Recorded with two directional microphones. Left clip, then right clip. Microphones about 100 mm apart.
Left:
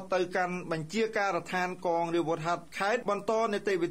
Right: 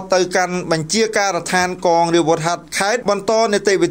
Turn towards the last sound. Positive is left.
turn(degrees=-35)  # may be behind; listen again after turning